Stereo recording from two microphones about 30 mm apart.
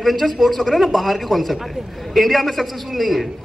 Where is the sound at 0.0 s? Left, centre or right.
Centre.